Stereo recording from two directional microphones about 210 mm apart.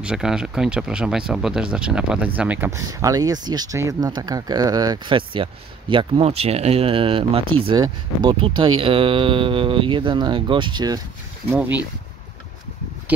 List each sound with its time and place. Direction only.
0.0 s speech: 5° right (ahead or behind); by 11.0 s 20° right (ahead or behind)
11.5 s speech: 5° right (ahead or behind)